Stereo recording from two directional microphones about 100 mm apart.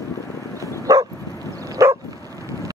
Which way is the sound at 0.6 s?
35° right (ahead or behind).